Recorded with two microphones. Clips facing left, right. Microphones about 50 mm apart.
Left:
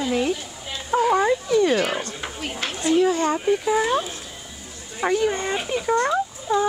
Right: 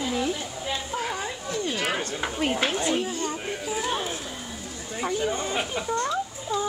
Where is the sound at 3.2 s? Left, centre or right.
Left.